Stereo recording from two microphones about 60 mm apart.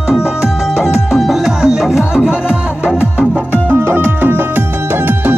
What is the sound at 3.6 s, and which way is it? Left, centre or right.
Music, right.